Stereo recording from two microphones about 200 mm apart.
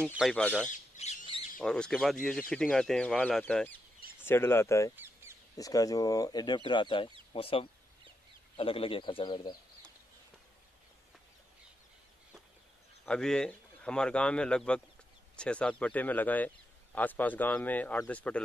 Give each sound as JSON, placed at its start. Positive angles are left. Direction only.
{"t": 0.1, "sound": "speech", "side_deg": 0}
{"t": 0.7, "sound": "squawk", "side_deg": 35}
{"t": 1.6, "sound": "speech", "side_deg": 5}
{"t": 4.9, "sound": "duck", "side_deg": -10}
{"t": 5.6, "sound": "speech", "side_deg": 15}
{"t": 13.0, "sound": "speech", "side_deg": 5}